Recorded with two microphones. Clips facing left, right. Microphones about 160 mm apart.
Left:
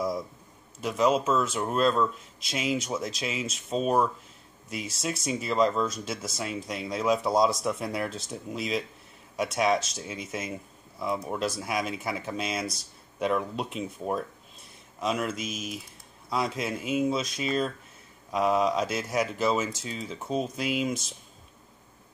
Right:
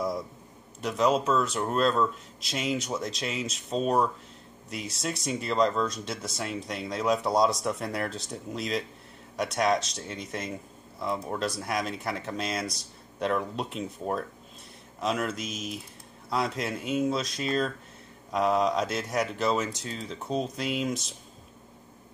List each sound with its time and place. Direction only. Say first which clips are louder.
0.7 s speech: left 1 dB; centre (ahead or behind)